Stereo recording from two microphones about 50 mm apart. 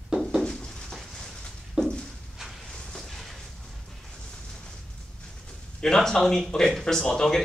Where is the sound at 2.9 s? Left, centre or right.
Centre.